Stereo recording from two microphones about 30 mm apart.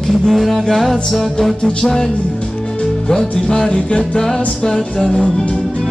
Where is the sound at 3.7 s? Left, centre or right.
Left.